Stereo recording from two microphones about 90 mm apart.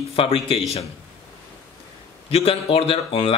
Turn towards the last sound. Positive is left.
turn(degrees=90)